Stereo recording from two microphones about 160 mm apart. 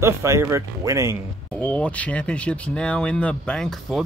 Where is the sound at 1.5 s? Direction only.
10° left (ahead or behind).